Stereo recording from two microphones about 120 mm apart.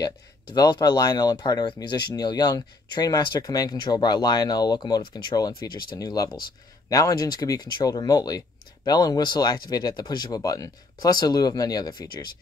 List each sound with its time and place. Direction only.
0.0 s speech: 35° left (ahead or behind)